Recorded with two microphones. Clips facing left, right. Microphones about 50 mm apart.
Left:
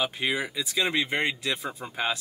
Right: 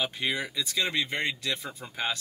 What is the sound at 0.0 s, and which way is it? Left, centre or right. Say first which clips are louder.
Speech: left 2 dB; centre.